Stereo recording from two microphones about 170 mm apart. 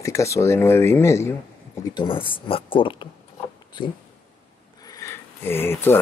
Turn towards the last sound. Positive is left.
turn(degrees=15)  # may be behind; listen again after turning